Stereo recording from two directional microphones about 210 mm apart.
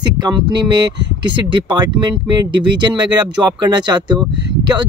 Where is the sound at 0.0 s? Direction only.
20° right (ahead or behind).